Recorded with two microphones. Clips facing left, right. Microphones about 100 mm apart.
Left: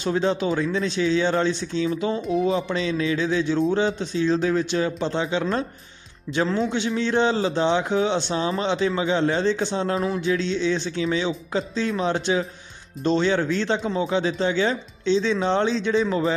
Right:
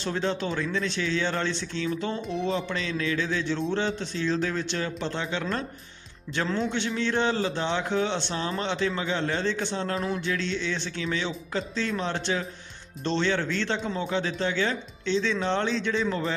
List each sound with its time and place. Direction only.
0.0 s speech: 15° left (ahead or behind)
2.7 s speech: 15° left (ahead or behind)
9.9 s speech: 5° left (ahead or behind)
10.2 s speech: 20° left (ahead or behind)